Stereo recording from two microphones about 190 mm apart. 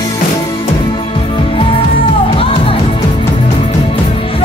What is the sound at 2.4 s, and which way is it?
Music, 30° left (ahead or behind).